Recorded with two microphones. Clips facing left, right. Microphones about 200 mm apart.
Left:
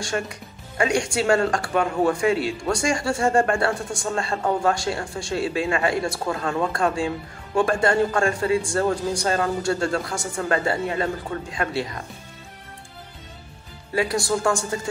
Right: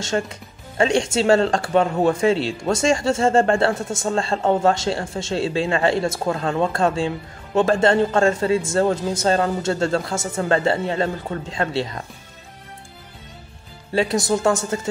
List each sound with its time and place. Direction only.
0.0 s speech: 25° right (ahead or behind)
13.9 s speech: 20° right (ahead or behind)